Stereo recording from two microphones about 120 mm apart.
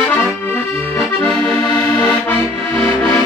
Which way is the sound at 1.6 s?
5° left (ahead or behind).